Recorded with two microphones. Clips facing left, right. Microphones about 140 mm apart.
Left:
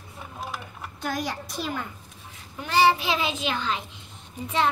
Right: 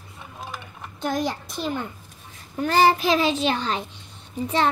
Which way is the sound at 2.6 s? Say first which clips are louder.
Right 3 dB; 45° right (ahead or behind).